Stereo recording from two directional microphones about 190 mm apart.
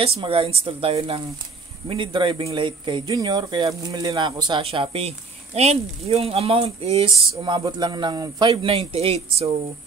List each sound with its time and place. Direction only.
0.2 s speech: 30° right (ahead or behind)